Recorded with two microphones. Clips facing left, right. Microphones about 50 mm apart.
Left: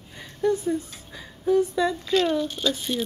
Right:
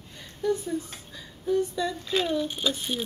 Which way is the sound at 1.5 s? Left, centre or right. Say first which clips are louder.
Left 5 dB; left.